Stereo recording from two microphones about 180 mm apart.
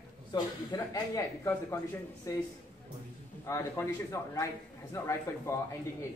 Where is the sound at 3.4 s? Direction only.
15° left (ahead or behind).